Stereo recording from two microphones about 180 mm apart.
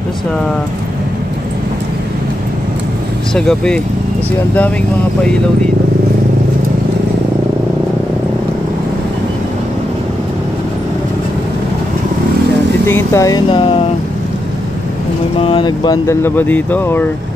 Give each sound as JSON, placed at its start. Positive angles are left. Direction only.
{"t": 3.3, "sound": "speech", "side_deg": 5}
{"t": 12.8, "sound": "speech", "side_deg": 15}
{"t": 13.5, "sound": "speech", "side_deg": 30}
{"t": 15.3, "sound": "speech", "side_deg": 30}